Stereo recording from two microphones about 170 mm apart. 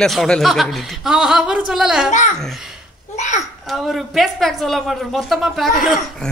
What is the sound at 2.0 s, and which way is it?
Speech, 45° left (ahead or behind).